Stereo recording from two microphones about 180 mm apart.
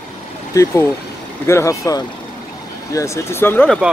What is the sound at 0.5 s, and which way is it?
Speech, 15° left (ahead or behind).